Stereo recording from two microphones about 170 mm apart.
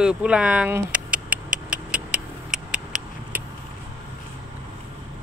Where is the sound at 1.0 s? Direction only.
55° right (ahead or behind).